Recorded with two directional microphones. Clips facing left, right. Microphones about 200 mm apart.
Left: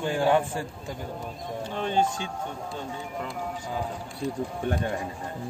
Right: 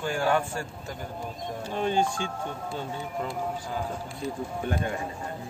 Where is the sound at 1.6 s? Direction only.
10° right (ahead or behind).